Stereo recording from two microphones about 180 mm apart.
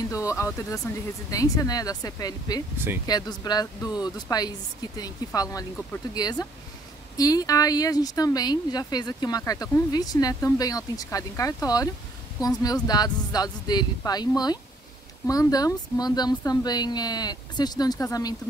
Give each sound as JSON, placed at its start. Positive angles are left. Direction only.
{"t": 0.1, "sound": "speech", "side_deg": 15}